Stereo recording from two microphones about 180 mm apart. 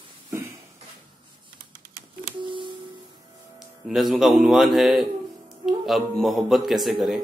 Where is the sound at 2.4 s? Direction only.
25° right (ahead or behind).